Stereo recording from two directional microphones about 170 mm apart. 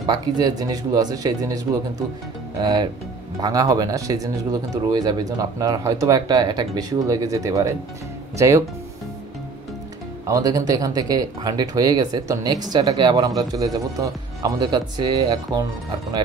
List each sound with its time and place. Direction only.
0.0 s speech: 20° right (ahead or behind)
10.2 s speech: 20° right (ahead or behind)